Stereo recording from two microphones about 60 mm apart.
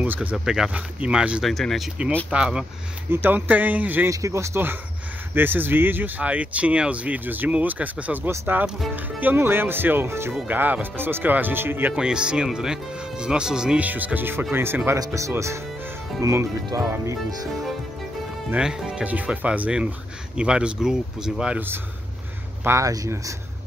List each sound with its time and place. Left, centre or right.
0.0 s speech: right
1.4 s speech: centre
2.3 s speech: centre
3.1 s speech: right
4.1 s speech: right
5.3 s speech: right
10.5 s speech: right
11.9 s speech: centre
13.7 s speech: right
15.0 s speech: right
18.6 s speech: centre
19.0 s speech: right
22.8 s speech: right